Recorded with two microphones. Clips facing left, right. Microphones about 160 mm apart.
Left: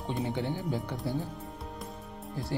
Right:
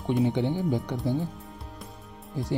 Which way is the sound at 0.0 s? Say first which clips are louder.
Right 7 dB; 20° right (ahead or behind).